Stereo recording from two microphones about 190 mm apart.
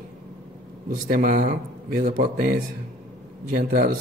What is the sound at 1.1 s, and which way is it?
Speech, 50° right (ahead or behind).